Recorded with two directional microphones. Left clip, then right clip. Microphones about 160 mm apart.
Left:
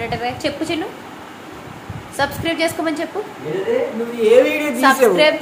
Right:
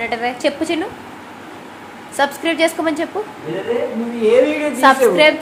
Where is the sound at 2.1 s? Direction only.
20° right (ahead or behind).